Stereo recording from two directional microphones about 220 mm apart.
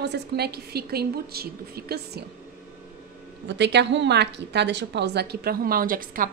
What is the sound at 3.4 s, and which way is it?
A woman's voice, 55° right (ahead or behind).